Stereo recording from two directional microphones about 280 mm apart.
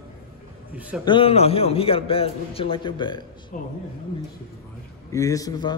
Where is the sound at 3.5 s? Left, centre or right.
Left.